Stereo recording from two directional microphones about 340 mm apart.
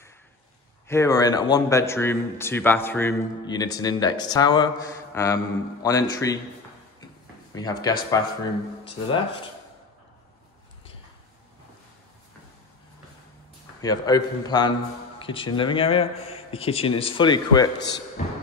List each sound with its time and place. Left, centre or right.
0.8 s speech: centre
7.5 s speech: centre
13.7 s speech: centre
18.2 s music: centre